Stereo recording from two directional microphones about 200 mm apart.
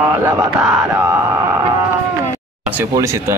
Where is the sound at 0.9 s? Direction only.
15° right (ahead or behind).